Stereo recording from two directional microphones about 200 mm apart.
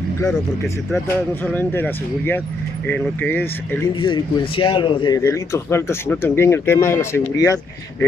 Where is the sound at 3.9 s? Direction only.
25° left (ahead or behind).